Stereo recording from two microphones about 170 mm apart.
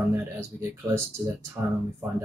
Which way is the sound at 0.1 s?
15° right (ahead or behind).